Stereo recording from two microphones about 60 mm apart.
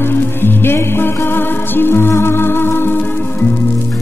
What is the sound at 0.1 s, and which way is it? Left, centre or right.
Music, left.